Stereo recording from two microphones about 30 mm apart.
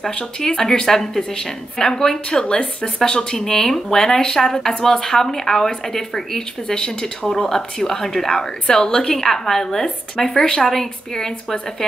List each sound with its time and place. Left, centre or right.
0.5 s a woman's voice: left
2.4 s speech: left
3.0 s a woman's voice: centre
8.6 s a woman's voice: left
10.1 s a woman's voice: left